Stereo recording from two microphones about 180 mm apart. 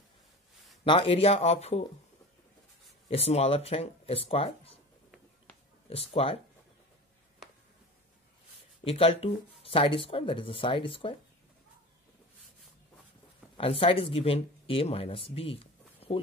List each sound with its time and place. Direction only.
0.8 s speech: 30° left (ahead or behind)
3.1 s speech: 35° left (ahead or behind)
5.9 s speech: 35° left (ahead or behind)
8.8 s speech: 30° left (ahead or behind)
13.6 s speech: 30° left (ahead or behind)